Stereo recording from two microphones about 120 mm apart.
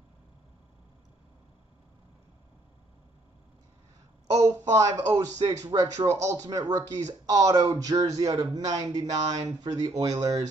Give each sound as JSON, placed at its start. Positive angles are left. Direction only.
{"t": 4.3, "sound": "a man's voice", "side_deg": -25}